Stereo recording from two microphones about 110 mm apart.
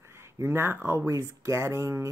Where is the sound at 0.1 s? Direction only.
25° right (ahead or behind).